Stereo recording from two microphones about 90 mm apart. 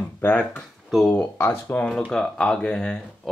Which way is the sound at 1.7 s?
10° left (ahead or behind).